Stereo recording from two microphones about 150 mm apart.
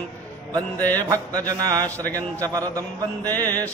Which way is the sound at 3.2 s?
15° left (ahead or behind).